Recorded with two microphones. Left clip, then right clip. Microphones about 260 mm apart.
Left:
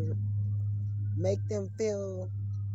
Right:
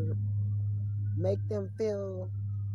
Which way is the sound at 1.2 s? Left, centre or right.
Left.